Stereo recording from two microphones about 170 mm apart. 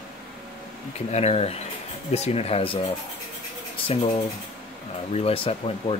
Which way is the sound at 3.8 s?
35° left (ahead or behind).